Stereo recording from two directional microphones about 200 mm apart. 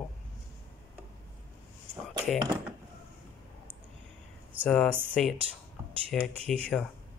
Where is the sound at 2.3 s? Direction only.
20° right (ahead or behind).